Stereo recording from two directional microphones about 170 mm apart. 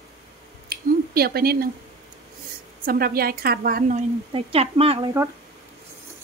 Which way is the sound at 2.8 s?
60° right (ahead or behind).